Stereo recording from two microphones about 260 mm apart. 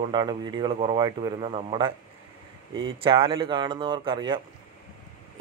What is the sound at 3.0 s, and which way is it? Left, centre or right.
Speech, centre.